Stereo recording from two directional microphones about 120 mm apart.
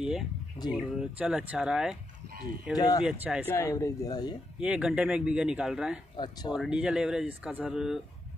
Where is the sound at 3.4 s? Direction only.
25° left (ahead or behind).